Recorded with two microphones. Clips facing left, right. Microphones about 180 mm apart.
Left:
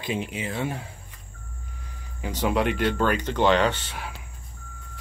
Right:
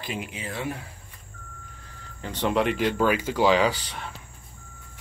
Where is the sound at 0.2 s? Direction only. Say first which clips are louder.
Left 4 dB; 20° left (ahead or behind).